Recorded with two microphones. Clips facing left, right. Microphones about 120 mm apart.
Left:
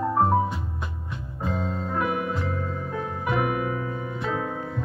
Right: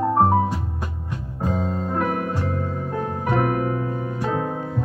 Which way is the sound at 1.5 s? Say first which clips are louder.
Right 4 dB; 40° right (ahead or behind).